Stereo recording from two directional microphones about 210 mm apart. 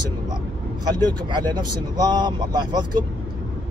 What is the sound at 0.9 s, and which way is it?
Speech, 20° right (ahead or behind).